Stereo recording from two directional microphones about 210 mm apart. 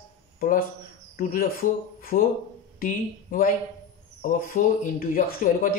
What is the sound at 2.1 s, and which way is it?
Speech, 40° left (ahead or behind).